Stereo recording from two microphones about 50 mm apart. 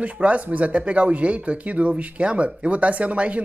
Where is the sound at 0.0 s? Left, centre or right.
Right.